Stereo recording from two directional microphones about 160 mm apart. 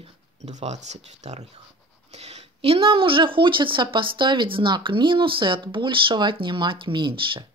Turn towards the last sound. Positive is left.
turn(degrees=-30)  # may be behind; listen again after turning